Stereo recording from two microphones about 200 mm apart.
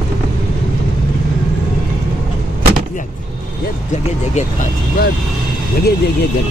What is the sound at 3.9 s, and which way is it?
Vehicle, 35° left (ahead or behind).